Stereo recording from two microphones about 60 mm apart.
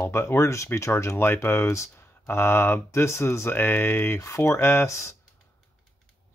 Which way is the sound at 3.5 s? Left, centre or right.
Left.